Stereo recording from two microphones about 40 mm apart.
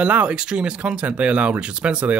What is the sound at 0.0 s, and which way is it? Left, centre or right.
A man's voice, right.